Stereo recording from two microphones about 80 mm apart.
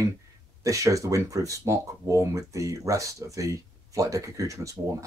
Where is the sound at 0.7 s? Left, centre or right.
Right.